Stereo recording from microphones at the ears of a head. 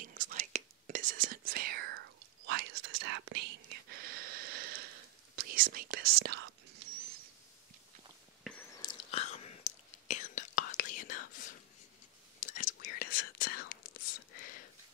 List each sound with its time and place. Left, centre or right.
0.0 s whispering: right
8.8 s whispering: left